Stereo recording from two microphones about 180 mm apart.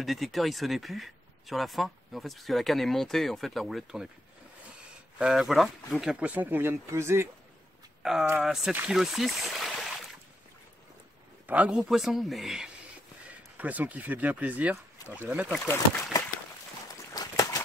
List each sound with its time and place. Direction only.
0.0 s speech: centre (ahead or behind)
5.2 s speech: centre (ahead or behind)
8.0 s speech: centre (ahead or behind)
11.4 s speech: 10° right (ahead or behind)
15.4 s speech: 10° left (ahead or behind)
17.1 s a sound: 20° left (ahead or behind)